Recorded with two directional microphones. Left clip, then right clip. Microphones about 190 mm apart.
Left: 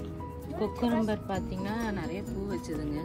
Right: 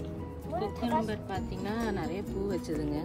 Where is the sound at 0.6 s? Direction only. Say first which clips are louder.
Left 2 dB; 5° left (ahead or behind).